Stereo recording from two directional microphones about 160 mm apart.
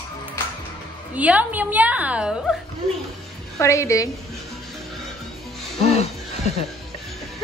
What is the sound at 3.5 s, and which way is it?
Speech, 20° left (ahead or behind).